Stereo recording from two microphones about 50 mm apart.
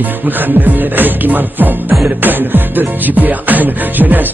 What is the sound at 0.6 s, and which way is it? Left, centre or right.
Music, right.